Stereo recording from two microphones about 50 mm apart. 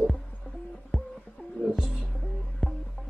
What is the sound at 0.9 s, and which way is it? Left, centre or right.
Music, centre.